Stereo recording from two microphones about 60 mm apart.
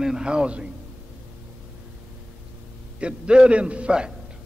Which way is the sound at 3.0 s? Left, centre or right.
Centre.